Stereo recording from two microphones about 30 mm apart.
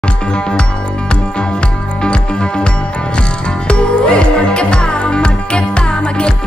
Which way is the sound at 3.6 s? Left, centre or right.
Left.